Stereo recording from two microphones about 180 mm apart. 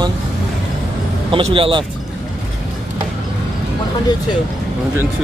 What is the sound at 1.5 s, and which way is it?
Speech, 30° right (ahead or behind).